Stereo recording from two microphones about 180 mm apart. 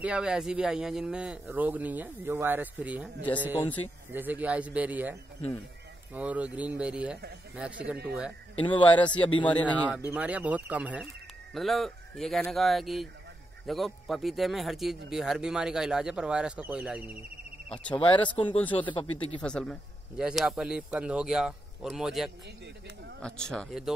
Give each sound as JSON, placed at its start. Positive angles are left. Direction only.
{"t": 0.0, "sound": "speech", "side_deg": -5}
{"t": 6.1, "sound": "speech", "side_deg": -10}
{"t": 8.6, "sound": "speech", "side_deg": 25}
{"t": 9.7, "sound": "a man's voice", "side_deg": -10}
{"t": 17.9, "sound": "speech", "side_deg": 25}
{"t": 19.4, "sound": "a man's voice", "side_deg": 5}